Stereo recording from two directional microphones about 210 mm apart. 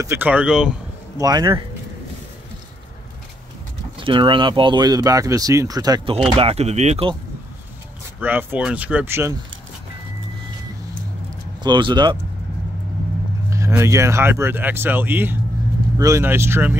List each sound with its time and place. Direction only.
0.0 s speech: 10° right (ahead or behind)
1.1 s speech: 20° right (ahead or behind)
4.0 s speech: 25° right (ahead or behind)
8.2 s speech: 10° right (ahead or behind)
11.6 s speech: 20° right (ahead or behind)
13.5 s speech: 15° right (ahead or behind)